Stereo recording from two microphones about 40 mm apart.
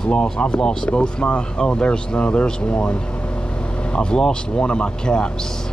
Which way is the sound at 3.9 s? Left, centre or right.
Left.